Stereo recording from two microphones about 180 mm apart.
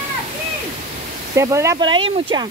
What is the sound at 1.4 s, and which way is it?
Speech, 15° right (ahead or behind).